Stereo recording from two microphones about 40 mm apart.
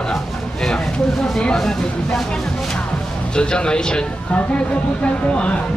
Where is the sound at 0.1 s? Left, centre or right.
Centre.